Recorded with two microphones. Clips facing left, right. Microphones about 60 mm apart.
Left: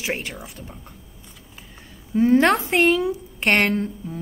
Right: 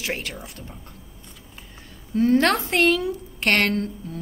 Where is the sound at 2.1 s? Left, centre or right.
Centre.